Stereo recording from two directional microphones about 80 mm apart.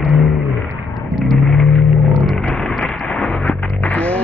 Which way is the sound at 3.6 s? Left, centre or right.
Centre.